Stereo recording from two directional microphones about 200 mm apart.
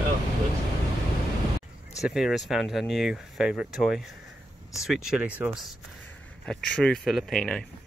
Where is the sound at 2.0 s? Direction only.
Centre (ahead or behind).